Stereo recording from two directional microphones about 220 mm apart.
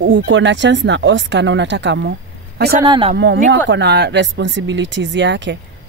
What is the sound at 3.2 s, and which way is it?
Speech, 50° right (ahead or behind).